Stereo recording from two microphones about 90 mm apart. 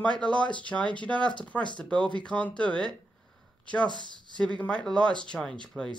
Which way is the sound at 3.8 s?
55° right (ahead or behind).